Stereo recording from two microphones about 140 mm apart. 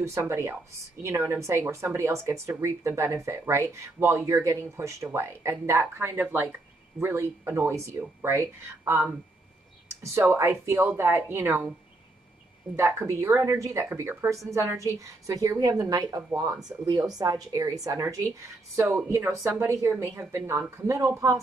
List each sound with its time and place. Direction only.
0.0 s a woman's voice: 20° right (ahead or behind)
10.1 s speech: 20° right (ahead or behind)
12.7 s a woman's voice: 20° right (ahead or behind)